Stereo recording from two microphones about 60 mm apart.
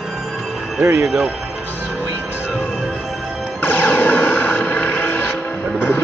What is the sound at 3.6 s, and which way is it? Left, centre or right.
Music, left.